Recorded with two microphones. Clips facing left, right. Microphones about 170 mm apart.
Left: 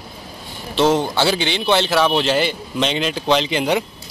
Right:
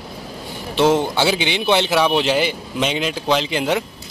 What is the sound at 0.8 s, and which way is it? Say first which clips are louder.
Speech: even; 15° right (ahead or behind).